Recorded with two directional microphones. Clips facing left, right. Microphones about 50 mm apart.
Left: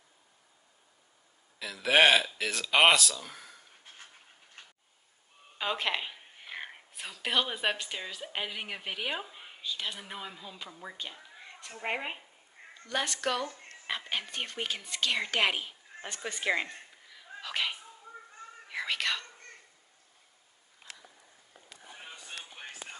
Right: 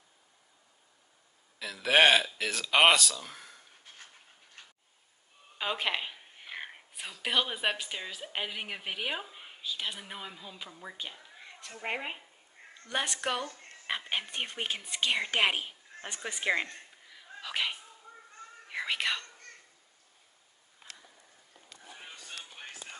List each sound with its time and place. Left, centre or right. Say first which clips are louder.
1.6 s speech: even; centre
5.6 s a woman's voice: even; centre
12.8 s speech: left 1 dB; centre
17.3 s sneeze: even; centre
18.7 s whispering: even; centre
20.9 s a sound: left 2 dB; right
22.4 s music: left 1 dB; centre